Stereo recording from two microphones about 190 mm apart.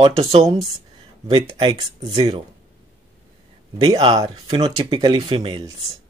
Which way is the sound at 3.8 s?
25° right (ahead or behind).